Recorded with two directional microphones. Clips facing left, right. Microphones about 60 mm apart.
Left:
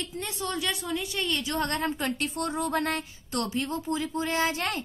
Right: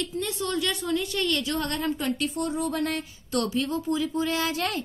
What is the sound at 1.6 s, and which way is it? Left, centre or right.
Speech, left.